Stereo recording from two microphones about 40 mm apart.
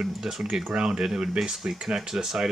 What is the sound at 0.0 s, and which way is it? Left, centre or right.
Speech, centre.